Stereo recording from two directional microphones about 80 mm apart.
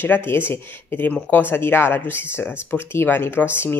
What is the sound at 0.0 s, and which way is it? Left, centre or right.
Speech, left.